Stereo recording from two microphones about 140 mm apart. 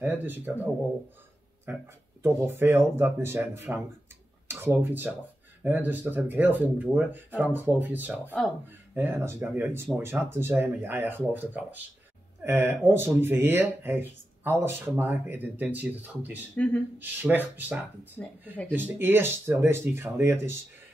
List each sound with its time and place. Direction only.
0.0 s speech: 15° right (ahead or behind)
2.2 s speech: 15° right (ahead or behind)
16.5 s speech: 10° left (ahead or behind)
17.0 s speech: 15° right (ahead or behind)
18.2 s speech: 10° left (ahead or behind)
18.7 s speech: 15° right (ahead or behind)